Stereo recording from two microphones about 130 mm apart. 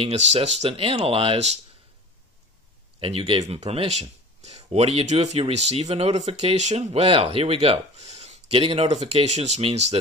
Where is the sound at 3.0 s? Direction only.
45° right (ahead or behind).